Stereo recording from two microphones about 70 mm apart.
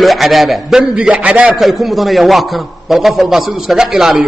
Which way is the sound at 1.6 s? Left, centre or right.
Centre.